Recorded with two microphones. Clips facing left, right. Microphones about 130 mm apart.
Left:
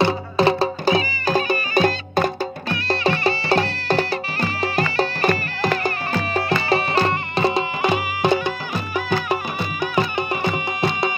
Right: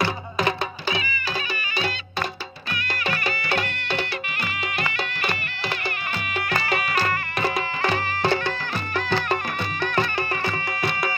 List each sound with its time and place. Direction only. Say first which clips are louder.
0.0 s music: left 7 dB; 30° left (ahead or behind)
2.7 s music: left 7 dB; 30° left (ahead or behind)